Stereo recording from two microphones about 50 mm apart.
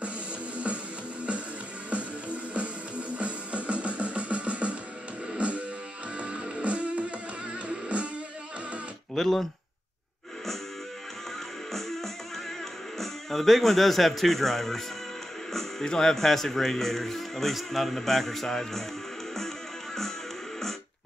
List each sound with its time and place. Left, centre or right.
1.9 s music: right
9.1 s speech: centre
11.7 s music: centre
13.0 s speech: centre